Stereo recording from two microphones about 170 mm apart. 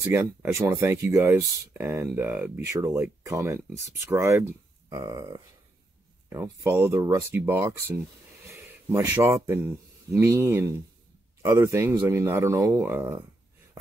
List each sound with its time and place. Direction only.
0.0 s speech: 15° right (ahead or behind)